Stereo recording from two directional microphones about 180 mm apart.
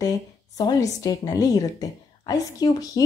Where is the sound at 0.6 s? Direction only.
20° left (ahead or behind).